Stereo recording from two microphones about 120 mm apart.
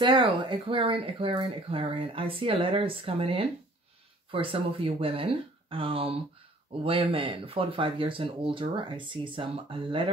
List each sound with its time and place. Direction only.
0.0 s speech: 40° right (ahead or behind)